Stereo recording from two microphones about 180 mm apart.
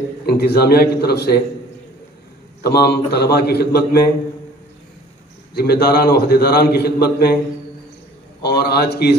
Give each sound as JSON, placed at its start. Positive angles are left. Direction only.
{"t": 0.3, "sound": "a man's voice", "side_deg": 60}
{"t": 2.6, "sound": "a man's voice", "side_deg": 60}
{"t": 5.5, "sound": "a man's voice", "side_deg": 60}
{"t": 8.4, "sound": "a man's voice", "side_deg": 65}